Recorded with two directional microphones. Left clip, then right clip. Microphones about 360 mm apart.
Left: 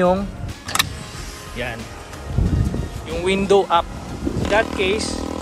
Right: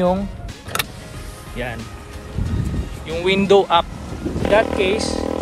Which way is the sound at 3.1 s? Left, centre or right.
Centre.